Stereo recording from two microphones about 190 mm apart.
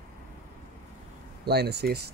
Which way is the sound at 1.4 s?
60° right (ahead or behind).